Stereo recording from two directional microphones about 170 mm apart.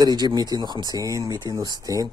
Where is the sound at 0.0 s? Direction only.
25° right (ahead or behind).